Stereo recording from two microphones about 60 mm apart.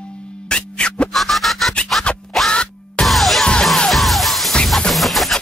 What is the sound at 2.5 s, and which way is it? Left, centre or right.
Music, centre.